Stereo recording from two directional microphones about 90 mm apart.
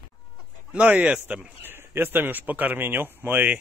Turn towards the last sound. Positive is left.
turn(degrees=-20)  # may be behind; listen again after turning